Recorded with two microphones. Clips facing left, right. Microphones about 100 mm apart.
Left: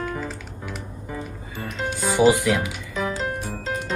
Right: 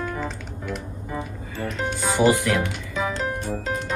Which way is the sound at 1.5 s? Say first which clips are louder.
Right 2 dB; 15° left (ahead or behind).